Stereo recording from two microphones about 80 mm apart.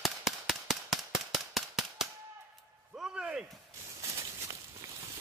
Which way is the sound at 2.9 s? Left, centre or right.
Centre.